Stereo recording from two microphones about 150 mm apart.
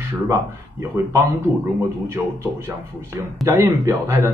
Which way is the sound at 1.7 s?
15° right (ahead or behind).